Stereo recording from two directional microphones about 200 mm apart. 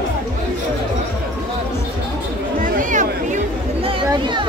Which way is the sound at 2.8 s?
40° right (ahead or behind).